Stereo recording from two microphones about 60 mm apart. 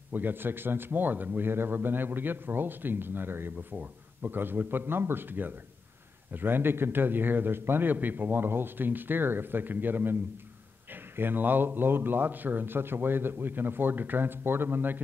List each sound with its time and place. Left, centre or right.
0.1 s a man's voice: right
3.7 s a man's voice: right